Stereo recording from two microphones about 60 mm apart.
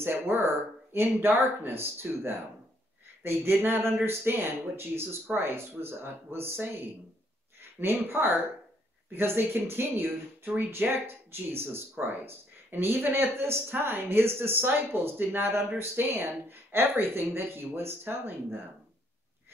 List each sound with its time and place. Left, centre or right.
0.0 s speech: right
7.8 s speech: right